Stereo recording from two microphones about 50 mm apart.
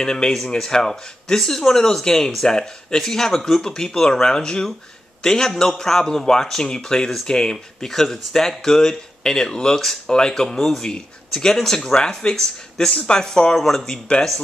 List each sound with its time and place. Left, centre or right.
0.0 s speech: centre